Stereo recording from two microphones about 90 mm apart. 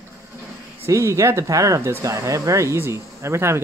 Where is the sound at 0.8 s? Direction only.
35° right (ahead or behind).